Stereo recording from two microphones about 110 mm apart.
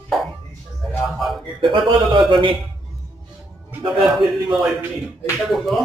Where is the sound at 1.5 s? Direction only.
45° right (ahead or behind).